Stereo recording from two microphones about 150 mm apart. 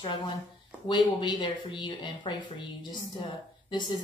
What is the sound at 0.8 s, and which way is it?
Speech, 30° left (ahead or behind).